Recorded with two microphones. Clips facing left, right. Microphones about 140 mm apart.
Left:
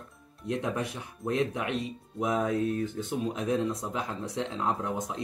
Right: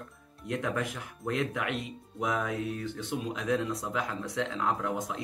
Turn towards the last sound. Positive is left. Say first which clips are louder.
# even
turn(degrees=35)  # may be behind; listen again after turning